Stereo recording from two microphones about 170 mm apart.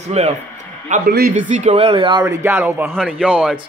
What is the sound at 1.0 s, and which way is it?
Speech, 65° right (ahead or behind).